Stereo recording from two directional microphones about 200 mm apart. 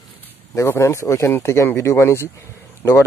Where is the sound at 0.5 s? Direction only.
15° left (ahead or behind).